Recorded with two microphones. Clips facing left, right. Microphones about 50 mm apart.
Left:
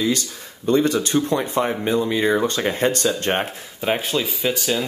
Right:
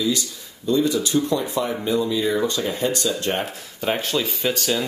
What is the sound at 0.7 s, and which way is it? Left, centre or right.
Speech, left.